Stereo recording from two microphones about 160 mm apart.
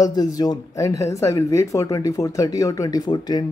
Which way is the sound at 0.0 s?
25° left (ahead or behind).